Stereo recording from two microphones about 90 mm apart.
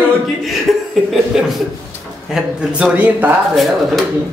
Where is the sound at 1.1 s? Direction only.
Centre (ahead or behind); by 3.4 s 20° right (ahead or behind).